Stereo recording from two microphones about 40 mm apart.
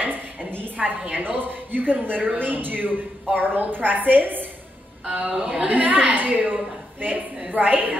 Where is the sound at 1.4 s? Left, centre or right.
Right.